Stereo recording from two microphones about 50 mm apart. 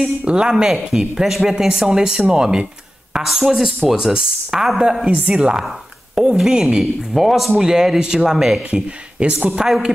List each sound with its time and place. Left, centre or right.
0.2 s speech: centre
5.0 s speech: right; by 8.5 s centre
8.6 s speech: right